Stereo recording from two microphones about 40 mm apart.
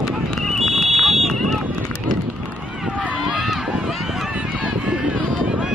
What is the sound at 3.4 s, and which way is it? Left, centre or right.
Run, centre.